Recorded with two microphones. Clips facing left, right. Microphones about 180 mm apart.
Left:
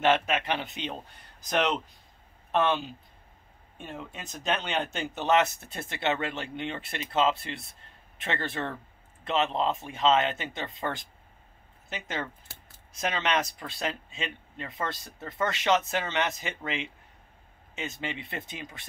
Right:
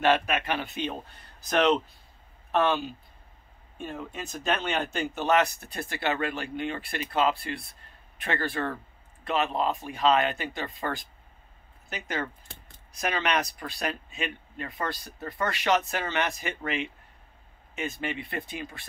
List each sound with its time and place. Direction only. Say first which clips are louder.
0.0 s speech: right 1 dB; 20° left (ahead or behind)
2.5 s speech: right 1 dB; 20° left (ahead or behind)
12.4 s a sound: right 3 dB; 5° left (ahead or behind)
12.9 s speech: right 1 dB; 25° left (ahead or behind)